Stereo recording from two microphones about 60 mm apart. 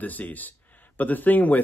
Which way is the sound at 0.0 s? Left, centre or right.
Left.